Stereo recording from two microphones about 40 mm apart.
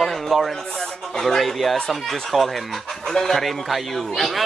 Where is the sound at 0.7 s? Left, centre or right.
Centre.